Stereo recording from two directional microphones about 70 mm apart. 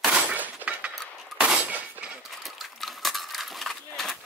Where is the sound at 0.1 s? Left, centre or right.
Right.